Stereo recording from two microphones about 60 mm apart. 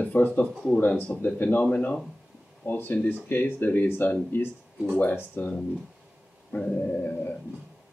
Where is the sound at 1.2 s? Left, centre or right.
Left.